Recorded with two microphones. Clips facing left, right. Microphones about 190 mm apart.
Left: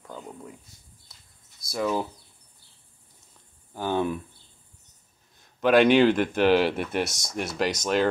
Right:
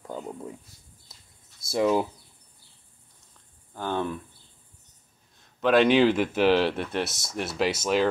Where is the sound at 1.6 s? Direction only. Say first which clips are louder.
Right 4 dB; 25° right (ahead or behind).